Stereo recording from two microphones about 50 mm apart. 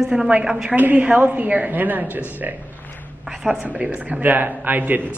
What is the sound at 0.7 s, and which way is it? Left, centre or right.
Speech, right.